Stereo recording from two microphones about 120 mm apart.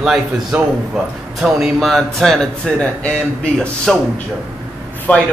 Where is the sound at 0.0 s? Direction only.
5° right (ahead or behind).